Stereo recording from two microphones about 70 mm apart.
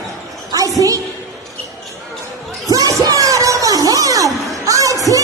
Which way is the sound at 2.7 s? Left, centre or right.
Right.